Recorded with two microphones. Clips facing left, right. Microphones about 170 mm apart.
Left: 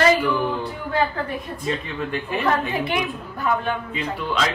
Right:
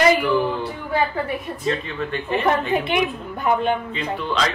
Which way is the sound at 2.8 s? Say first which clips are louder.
Right 3 dB; 20° right (ahead or behind).